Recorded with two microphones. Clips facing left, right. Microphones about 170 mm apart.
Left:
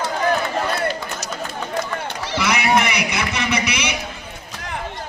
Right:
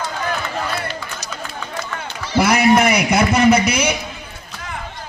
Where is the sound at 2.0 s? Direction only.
70° left (ahead or behind).